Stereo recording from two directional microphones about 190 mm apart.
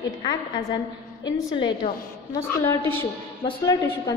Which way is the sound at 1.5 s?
25° left (ahead or behind).